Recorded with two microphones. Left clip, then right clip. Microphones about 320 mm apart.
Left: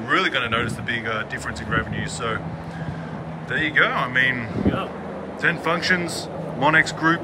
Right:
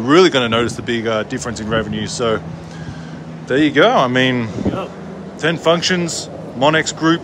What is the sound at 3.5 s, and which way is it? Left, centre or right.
A man's voice, centre.